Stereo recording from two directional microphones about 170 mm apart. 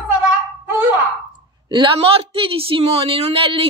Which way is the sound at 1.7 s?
30° right (ahead or behind).